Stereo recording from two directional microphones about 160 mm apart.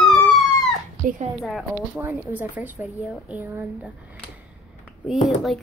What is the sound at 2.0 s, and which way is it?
A woman's voice, 10° right (ahead or behind).